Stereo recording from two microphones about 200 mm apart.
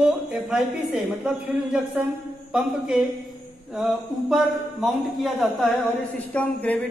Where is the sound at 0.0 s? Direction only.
5° right (ahead or behind).